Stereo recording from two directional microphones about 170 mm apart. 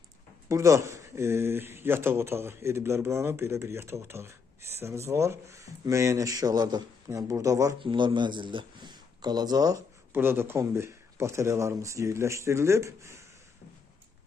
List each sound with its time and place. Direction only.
0.5 s speech: 15° right (ahead or behind)